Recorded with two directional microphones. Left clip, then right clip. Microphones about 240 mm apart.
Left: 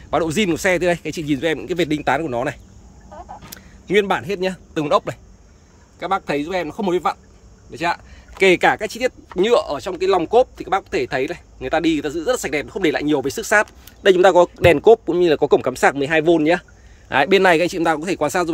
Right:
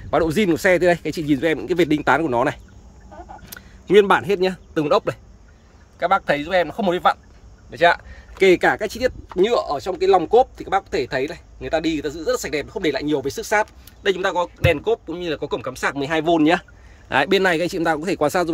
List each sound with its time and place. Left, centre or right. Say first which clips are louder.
0.1 s speech: right 1 dB; centre
8.4 s speech: left 1 dB; centre